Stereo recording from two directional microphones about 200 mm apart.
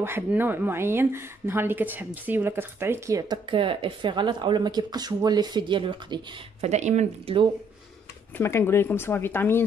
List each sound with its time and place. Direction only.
0.0 s speech: 10° right (ahead or behind)
6.7 s speech: 35° right (ahead or behind)
8.4 s speech: 10° left (ahead or behind)